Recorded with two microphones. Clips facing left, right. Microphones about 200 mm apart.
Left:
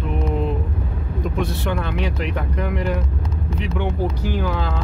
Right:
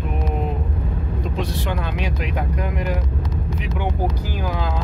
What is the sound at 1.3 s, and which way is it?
Speech, 60° left (ahead or behind).